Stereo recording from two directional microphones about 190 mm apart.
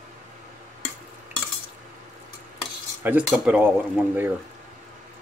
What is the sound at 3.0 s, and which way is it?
Speech, 5° right (ahead or behind).